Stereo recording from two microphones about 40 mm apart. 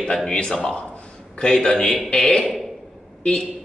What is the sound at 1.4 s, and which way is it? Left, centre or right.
Speech, centre.